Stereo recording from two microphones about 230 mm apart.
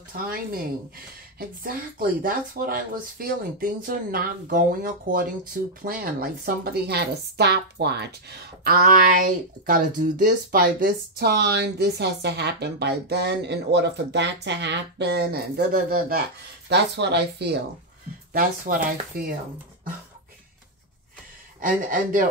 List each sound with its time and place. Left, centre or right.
0.1 s speech: right
21.5 s speech: right